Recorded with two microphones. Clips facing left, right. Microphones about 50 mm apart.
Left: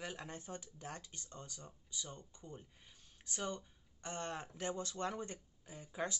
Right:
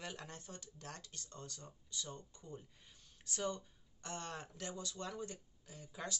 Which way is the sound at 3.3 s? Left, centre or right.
Centre.